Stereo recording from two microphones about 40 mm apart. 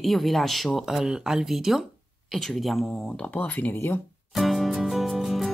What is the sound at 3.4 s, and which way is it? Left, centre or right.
Speech, left.